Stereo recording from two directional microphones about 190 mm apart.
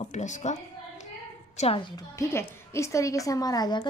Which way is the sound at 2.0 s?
15° left (ahead or behind).